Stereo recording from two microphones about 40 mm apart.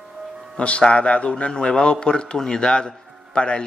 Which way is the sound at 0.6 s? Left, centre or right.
Left.